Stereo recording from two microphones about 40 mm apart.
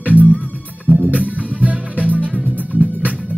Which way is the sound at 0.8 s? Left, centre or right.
Right.